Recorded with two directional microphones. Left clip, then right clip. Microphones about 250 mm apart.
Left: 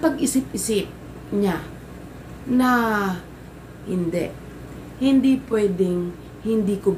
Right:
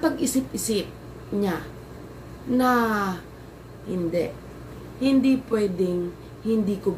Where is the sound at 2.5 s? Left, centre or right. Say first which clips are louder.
Left 2 dB; centre.